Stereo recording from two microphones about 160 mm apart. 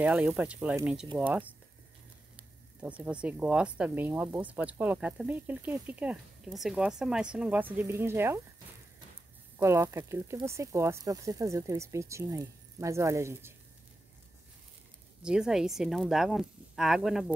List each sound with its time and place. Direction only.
0.0 s speech: 10° right (ahead or behind)
2.8 s speech: 10° right (ahead or behind)
9.6 s speech: 15° right (ahead or behind)
15.2 s speech: 5° right (ahead or behind)